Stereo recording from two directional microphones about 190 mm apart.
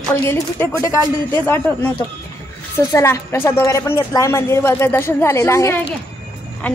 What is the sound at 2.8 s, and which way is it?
A woman's voice, 15° left (ahead or behind).